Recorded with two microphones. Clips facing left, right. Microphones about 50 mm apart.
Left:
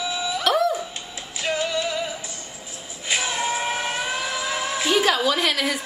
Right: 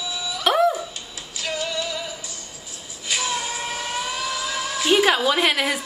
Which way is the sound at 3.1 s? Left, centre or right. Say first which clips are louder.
Left 2 dB; left.